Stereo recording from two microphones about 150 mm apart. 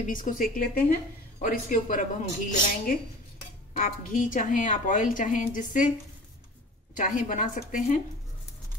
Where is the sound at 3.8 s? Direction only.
60° left (ahead or behind).